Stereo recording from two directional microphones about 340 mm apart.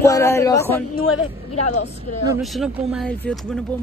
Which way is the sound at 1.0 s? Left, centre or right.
Left.